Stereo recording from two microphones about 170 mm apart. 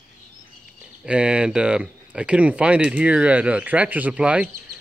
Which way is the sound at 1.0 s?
5° right (ahead or behind).